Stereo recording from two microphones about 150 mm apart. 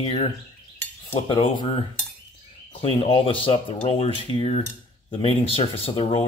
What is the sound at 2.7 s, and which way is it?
Speech, 40° left (ahead or behind).